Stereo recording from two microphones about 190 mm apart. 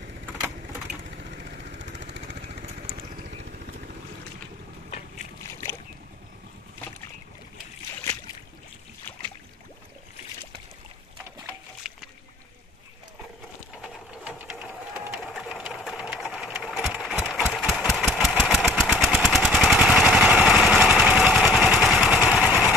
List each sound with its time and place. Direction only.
1.3 s vehicle: 50° right (ahead or behind)
2.3 s vehicle: 35° right (ahead or behind)
5.4 s boat: 15° left (ahead or behind)
11.8 s a sound: centre (ahead or behind)
13.7 s sewing machine: 5° right (ahead or behind)
17.5 s engine: centre (ahead or behind)